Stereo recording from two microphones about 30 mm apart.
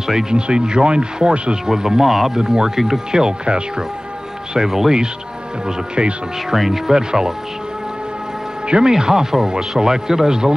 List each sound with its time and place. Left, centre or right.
0.0 s speech: centre
0.3 s speech: right
1.7 s speech: centre
2.3 s speech: right
3.4 s speech: right
4.6 s speech: centre
6.5 s speech: centre
7.0 s speech: right
8.6 s speech: right
8.9 s speech: centre